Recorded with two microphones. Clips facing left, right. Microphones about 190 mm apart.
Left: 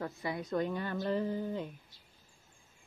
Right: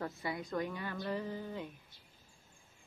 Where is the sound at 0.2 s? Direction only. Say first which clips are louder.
Left 2 dB; 25° left (ahead or behind).